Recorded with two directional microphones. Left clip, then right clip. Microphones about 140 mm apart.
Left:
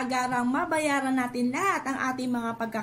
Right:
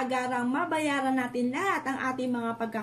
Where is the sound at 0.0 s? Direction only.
20° left (ahead or behind).